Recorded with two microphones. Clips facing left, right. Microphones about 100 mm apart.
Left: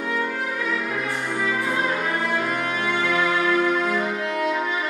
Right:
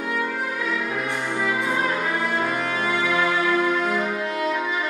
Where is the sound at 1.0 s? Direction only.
15° right (ahead or behind).